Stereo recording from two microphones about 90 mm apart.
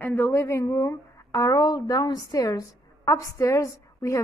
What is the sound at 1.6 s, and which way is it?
A woman's voice, 55° left (ahead or behind).